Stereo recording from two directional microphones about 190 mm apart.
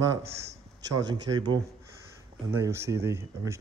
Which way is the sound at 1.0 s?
20° right (ahead or behind).